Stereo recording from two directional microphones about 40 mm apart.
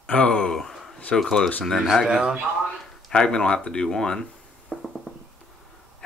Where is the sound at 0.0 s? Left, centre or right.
Left.